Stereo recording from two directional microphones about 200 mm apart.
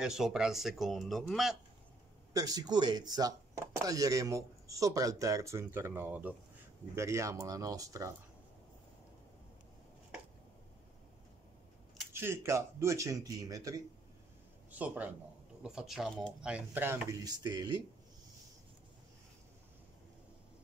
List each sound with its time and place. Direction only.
0.0 s speech: 5° right (ahead or behind)
2.3 s speech: 20° right (ahead or behind)
12.1 s speech: 10° right (ahead or behind)